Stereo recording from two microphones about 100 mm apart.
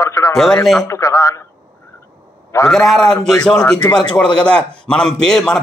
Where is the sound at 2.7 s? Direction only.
Centre (ahead or behind).